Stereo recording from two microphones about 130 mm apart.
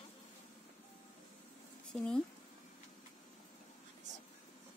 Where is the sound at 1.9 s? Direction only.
5° left (ahead or behind).